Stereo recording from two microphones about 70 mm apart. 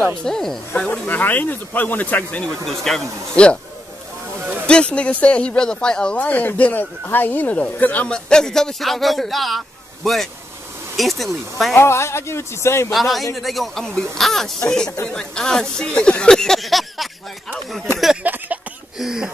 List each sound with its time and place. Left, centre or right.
0.2 s speech: centre
0.7 s speech: left
2.4 s speech: centre
3.4 s speech: centre
4.6 s speech: centre
6.1 s speech: left; by 9.6 s centre
11.0 s speech: centre
11.7 s speech: left
12.9 s speech: centre
18.2 s a sound: right
18.9 s speech: centre